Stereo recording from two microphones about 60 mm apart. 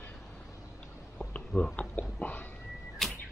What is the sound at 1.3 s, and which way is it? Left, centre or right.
Speech, left.